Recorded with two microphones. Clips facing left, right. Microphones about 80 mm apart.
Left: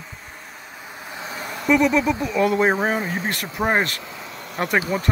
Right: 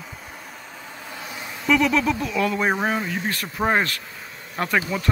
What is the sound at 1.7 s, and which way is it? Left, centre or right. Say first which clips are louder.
Speech: left 2 dB; left.